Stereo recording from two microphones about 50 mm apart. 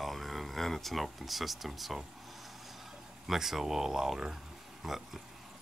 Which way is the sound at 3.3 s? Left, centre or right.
Centre.